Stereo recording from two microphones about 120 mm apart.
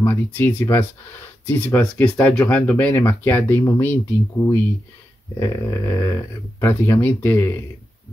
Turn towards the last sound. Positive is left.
turn(degrees=20)  # may be behind; listen again after turning